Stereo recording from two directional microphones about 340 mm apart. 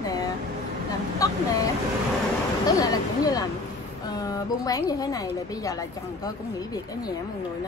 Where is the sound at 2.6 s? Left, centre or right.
Centre.